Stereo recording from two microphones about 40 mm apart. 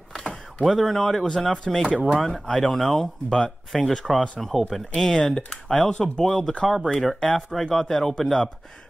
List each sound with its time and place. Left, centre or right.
0.2 s speech: centre
1.9 s speech: right
2.1 s speech: centre
4.9 s speech: centre
6.2 s speech: centre